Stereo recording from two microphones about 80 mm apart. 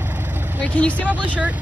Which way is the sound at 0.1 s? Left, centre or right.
Right.